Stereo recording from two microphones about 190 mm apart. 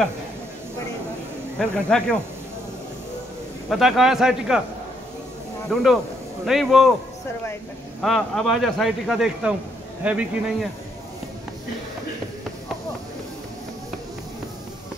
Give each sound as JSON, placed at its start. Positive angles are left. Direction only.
{"t": 1.6, "sound": "speech", "side_deg": 5}
{"t": 3.6, "sound": "speech", "side_deg": 0}
{"t": 5.7, "sound": "speech", "side_deg": 0}
{"t": 8.0, "sound": "speech", "side_deg": 0}